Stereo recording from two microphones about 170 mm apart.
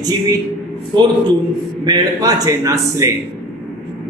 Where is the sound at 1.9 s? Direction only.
20° right (ahead or behind).